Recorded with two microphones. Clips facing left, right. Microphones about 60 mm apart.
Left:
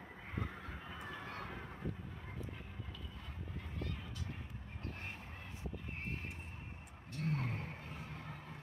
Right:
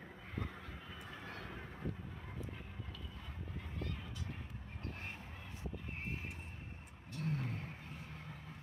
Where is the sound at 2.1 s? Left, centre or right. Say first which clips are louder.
Even; centre.